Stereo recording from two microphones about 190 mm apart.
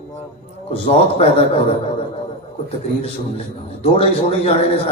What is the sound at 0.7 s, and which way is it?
Speech, 30° left (ahead or behind).